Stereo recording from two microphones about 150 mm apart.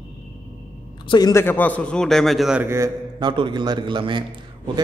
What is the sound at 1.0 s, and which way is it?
Speech, 25° left (ahead or behind).